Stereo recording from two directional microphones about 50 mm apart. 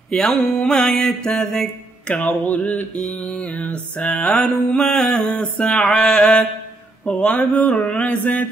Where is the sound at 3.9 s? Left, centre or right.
Left.